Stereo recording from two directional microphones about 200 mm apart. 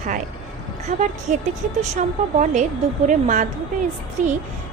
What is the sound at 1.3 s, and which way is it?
A woman's voice, 40° right (ahead or behind).